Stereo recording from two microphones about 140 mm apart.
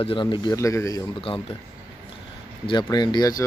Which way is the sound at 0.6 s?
20° left (ahead or behind).